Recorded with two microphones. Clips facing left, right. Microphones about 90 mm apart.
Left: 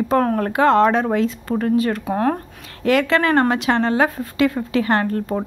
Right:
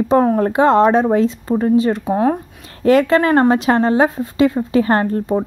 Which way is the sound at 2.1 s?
10° right (ahead or behind).